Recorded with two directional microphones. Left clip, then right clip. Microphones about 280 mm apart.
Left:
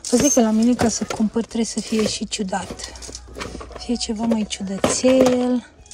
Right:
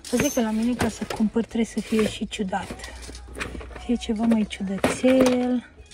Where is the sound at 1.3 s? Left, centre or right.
Centre.